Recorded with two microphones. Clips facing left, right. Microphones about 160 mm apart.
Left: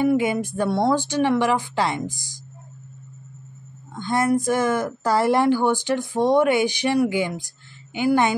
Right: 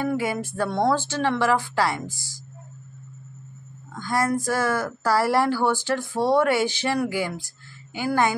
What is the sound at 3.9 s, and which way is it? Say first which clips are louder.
Speech: left 3 dB; 25° left (ahead or behind).